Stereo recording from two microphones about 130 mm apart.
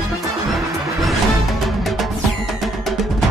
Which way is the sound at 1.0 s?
Centre (ahead or behind).